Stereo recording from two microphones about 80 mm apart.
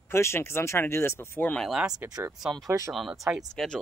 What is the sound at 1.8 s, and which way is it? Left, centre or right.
Speech, centre.